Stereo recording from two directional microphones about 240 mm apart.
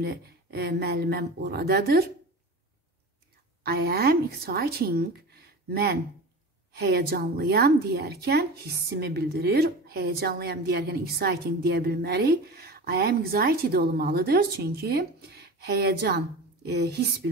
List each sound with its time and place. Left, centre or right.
0.0 s a woman's voice: right
3.6 s a woman's voice: right